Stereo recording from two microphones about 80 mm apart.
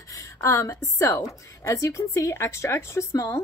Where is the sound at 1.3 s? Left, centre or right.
Left.